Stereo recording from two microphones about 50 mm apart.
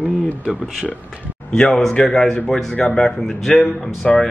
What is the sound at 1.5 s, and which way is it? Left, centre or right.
A man's voice, centre.